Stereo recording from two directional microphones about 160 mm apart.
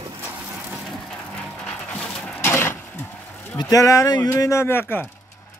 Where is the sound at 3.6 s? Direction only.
20° left (ahead or behind).